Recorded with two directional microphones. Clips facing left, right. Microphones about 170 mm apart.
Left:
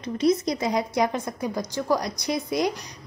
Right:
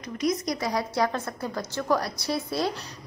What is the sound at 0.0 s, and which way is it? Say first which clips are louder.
A woman's voice: left 5 dB; 30° left (ahead or behind).